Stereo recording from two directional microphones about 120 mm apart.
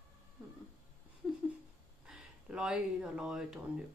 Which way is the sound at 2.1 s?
5° right (ahead or behind).